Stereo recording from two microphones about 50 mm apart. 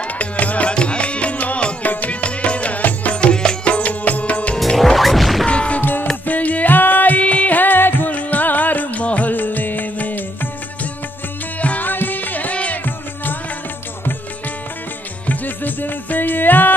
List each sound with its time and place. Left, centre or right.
0.0 s music: left
3.2 s music: centre
4.7 s music: centre
5.5 s music: left
5.8 s music: left
8.1 s music: left
15.2 s music: left